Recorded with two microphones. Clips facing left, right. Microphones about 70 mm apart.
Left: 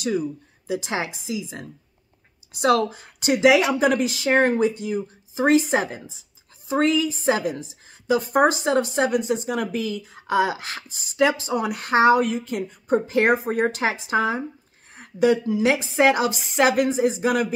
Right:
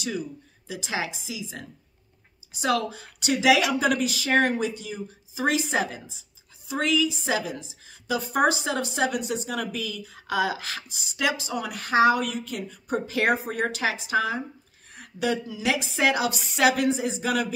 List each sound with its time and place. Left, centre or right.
0.0 s speech: left
3.3 s speech: left
10.9 s speech: left
15.0 s a sound: left
15.6 s speech: left